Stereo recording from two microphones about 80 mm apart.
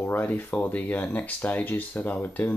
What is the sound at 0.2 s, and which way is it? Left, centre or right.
Speech, left.